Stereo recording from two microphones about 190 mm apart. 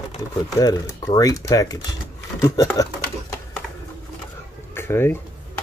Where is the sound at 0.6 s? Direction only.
20° left (ahead or behind).